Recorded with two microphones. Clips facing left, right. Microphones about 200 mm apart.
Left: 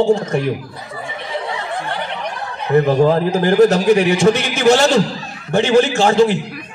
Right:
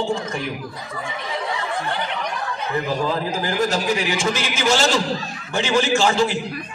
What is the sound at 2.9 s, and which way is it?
A man's voice, 60° left (ahead or behind).